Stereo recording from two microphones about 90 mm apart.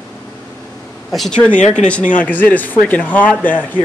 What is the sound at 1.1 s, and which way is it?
Speech, 5° left (ahead or behind).